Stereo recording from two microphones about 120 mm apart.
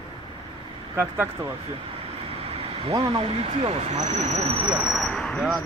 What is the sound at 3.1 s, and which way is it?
Speech, 50° right (ahead or behind).